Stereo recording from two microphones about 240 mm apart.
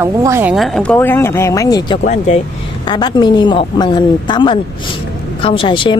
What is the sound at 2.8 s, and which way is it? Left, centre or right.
Speech, centre.